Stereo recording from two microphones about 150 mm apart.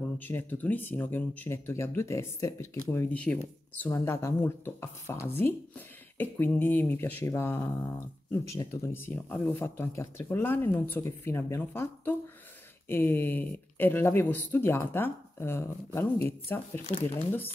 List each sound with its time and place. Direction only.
0.2 s speech: 15° left (ahead or behind)